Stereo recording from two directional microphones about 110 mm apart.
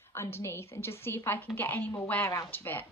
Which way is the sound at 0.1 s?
25° left (ahead or behind).